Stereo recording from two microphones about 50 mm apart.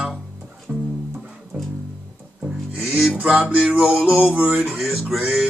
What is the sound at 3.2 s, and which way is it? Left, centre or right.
Music, right.